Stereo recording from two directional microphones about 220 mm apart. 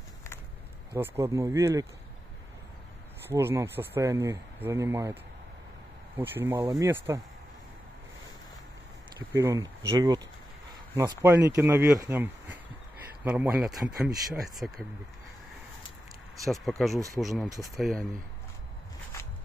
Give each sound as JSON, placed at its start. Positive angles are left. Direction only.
{"t": 0.9, "sound": "speech", "side_deg": -10}
{"t": 3.3, "sound": "speech", "side_deg": -10}
{"t": 9.3, "sound": "speech", "side_deg": -15}
{"t": 16.4, "sound": "speech", "side_deg": 0}
{"t": 16.9, "sound": "speech", "side_deg": -15}
{"t": 17.2, "sound": "speech", "side_deg": 0}